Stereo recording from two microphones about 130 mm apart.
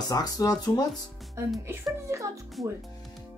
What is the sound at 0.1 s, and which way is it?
Speech, 30° left (ahead or behind).